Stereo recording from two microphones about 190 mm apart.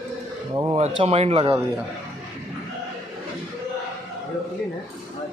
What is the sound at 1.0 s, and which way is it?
Speech, 35° right (ahead or behind).